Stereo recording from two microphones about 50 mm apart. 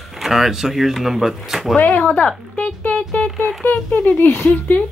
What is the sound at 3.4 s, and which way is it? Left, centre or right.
Speech, left.